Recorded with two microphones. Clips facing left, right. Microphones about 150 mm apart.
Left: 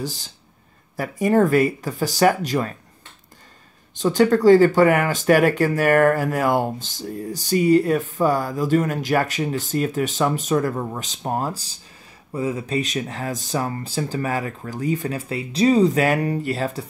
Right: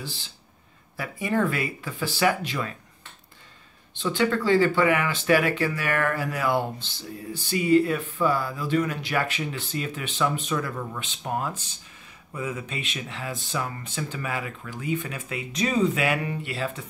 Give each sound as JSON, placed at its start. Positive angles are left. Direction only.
{"t": 0.0, "sound": "speech", "side_deg": 40}
{"t": 3.9, "sound": "speech", "side_deg": 40}